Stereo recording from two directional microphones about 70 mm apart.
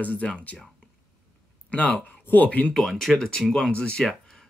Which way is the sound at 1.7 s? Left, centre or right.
Centre.